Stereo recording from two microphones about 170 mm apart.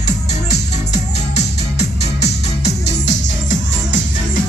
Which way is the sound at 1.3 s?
80° left.